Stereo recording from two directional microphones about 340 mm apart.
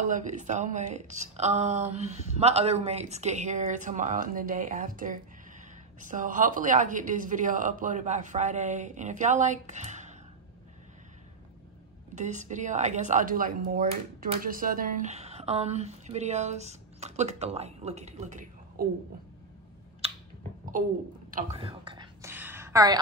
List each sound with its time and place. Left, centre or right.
0.1 s speech: right
12.2 s speech: right
21.3 s whispering: right